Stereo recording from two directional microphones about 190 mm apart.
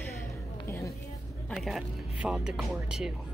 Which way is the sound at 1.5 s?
Centre (ahead or behind).